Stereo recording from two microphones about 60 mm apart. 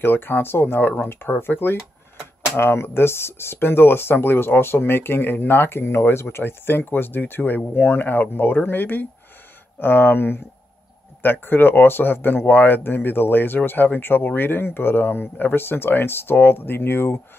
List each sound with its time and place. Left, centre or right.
0.0 s speech: left
11.4 s speech: left